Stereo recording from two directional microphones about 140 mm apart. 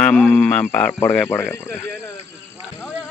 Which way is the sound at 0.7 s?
10° left (ahead or behind).